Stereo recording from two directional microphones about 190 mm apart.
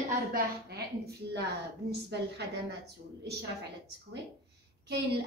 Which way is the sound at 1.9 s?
60° right (ahead or behind).